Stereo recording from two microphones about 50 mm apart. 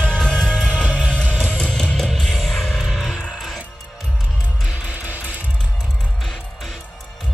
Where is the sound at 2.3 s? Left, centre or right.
Centre.